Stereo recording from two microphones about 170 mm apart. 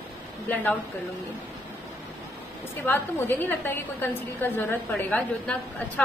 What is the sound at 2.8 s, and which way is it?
A woman's voice, 10° left (ahead or behind).